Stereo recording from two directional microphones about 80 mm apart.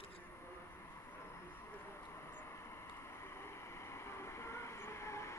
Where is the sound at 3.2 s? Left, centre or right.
Left.